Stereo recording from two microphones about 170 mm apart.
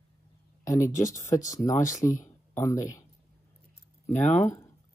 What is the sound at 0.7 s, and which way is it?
Speech, 15° left (ahead or behind).